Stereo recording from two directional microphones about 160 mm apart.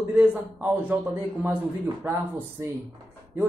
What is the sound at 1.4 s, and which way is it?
Speech, 15° right (ahead or behind).